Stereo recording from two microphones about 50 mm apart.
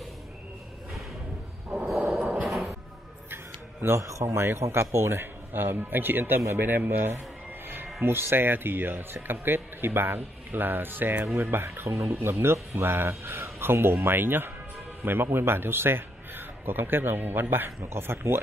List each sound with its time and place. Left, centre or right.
2.4 s a sound: centre
3.8 s speech: right
7.6 s music: right
8.0 s a man's voice: right
17.6 s speech: right